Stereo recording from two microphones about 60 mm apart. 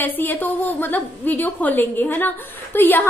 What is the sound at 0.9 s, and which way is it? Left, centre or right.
A woman's voice, left.